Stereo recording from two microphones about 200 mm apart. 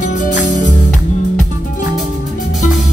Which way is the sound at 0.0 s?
40° left (ahead or behind).